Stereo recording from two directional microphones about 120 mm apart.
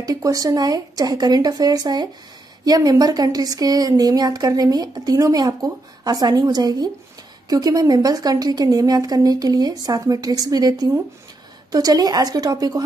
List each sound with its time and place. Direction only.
0.0 s a woman's voice: 30° right (ahead or behind)